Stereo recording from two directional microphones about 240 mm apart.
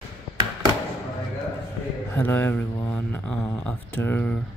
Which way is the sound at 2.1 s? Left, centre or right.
Centre.